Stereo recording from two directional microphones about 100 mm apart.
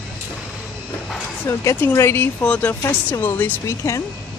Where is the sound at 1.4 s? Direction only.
25° left (ahead or behind).